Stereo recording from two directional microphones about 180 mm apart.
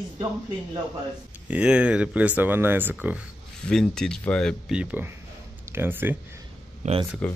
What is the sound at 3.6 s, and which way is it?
Speech, 5° left (ahead or behind).